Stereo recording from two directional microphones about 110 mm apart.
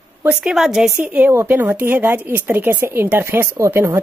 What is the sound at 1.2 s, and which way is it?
Speech, 20° right (ahead or behind).